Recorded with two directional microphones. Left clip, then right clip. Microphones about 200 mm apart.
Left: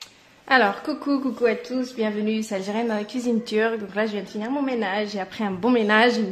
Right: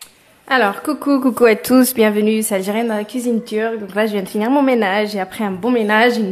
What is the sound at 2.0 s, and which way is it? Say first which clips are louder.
A woman's voice: right 11 dB; 25° right (ahead or behind).